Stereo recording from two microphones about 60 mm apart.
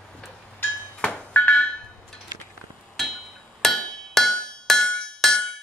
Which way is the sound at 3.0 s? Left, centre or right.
Centre.